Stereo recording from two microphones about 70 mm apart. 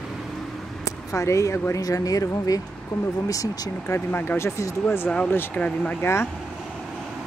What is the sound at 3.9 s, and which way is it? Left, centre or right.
Speech, left.